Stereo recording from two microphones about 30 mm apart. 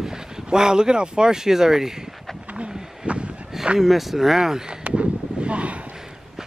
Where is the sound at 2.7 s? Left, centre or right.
Right.